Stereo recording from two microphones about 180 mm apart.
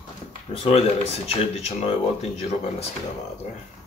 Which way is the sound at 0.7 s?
35° left (ahead or behind).